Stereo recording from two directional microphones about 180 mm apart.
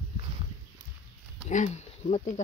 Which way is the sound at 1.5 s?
40° left (ahead or behind).